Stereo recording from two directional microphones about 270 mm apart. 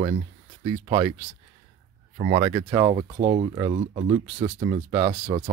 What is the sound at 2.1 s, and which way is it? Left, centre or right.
Speech, right.